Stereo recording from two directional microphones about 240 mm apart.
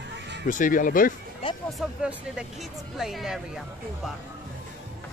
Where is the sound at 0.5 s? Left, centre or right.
Left.